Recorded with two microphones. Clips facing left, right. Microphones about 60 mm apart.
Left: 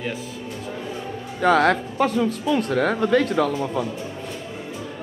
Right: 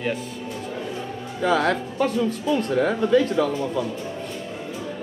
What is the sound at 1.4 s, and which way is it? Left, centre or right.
Speech, left.